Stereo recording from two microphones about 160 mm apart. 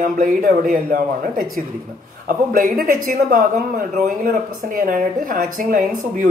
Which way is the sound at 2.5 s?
60° right (ahead or behind).